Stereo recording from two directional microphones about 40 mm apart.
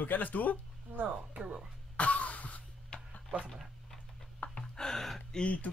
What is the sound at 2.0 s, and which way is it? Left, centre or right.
Throat clearing, left.